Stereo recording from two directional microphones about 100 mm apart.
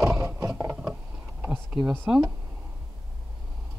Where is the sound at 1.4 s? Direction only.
10° right (ahead or behind).